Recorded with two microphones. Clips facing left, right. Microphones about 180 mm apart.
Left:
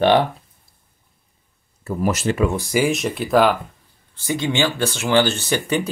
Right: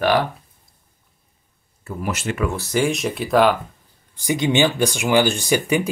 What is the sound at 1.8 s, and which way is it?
Speech, 40° left (ahead or behind).